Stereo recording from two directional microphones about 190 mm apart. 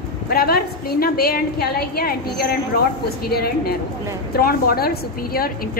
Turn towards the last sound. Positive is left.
turn(degrees=50)  # may be behind; listen again after turning